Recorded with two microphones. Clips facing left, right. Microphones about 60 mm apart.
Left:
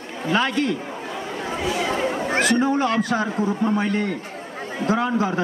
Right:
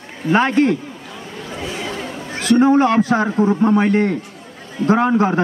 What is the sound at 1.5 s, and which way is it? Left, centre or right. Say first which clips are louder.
Chatter: left 3 dB; left.